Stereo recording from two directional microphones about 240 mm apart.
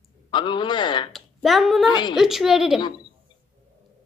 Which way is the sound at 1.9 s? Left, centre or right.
Centre.